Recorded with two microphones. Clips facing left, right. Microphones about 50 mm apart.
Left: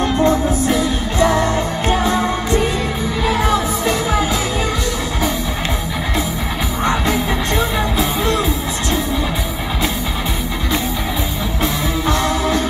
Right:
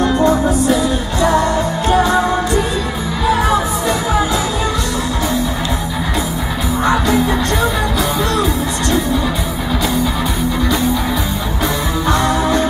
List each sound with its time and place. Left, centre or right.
0.2 s music: right
1.4 s music: left
7.1 s music: left
12.2 s music: centre